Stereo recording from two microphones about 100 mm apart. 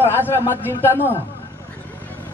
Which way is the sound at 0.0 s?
25° left (ahead or behind).